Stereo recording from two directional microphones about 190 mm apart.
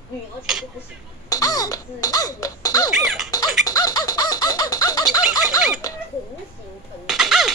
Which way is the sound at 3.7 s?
20° left (ahead or behind).